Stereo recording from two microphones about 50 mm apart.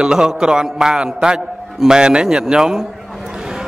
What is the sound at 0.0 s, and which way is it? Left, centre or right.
A man's voice, centre.